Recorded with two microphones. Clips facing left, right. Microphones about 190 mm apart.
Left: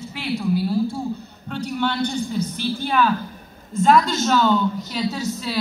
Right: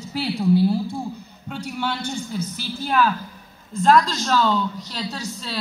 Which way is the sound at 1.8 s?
10° right (ahead or behind).